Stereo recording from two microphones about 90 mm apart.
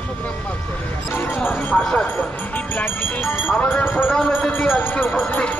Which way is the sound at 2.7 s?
20° left (ahead or behind).